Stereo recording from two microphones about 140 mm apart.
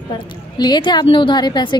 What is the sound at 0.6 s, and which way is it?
A woman's voice, 30° left (ahead or behind).